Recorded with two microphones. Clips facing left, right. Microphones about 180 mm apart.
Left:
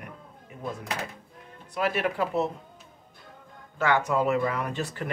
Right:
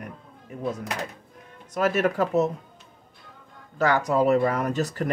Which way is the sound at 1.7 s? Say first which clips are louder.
Right 4 dB; 45° right (ahead or behind).